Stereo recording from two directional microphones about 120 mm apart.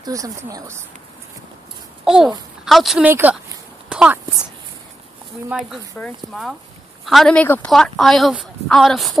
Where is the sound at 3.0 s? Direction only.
15° right (ahead or behind).